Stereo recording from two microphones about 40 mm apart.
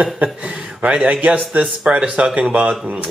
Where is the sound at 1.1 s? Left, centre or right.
Right.